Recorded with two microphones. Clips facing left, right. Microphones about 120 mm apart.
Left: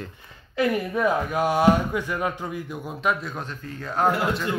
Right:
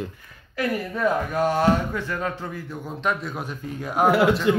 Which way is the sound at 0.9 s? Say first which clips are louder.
Even; 10° left (ahead or behind).